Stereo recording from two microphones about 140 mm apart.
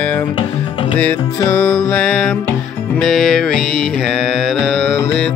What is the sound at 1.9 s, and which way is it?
Music, 5° left (ahead or behind).